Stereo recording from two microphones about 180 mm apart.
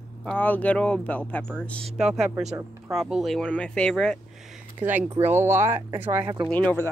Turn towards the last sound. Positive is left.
turn(degrees=10)  # may be behind; listen again after turning